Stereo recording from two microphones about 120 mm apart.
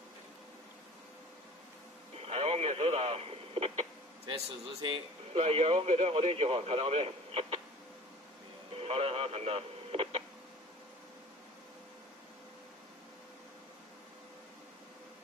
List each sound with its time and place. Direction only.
2.1 s radio: 55° right (ahead or behind)
4.8 s speech: 50° right (ahead or behind)
8.7 s radio: 55° right (ahead or behind)